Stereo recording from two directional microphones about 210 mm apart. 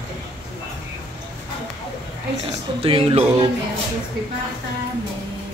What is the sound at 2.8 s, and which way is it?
Music, 25° right (ahead or behind).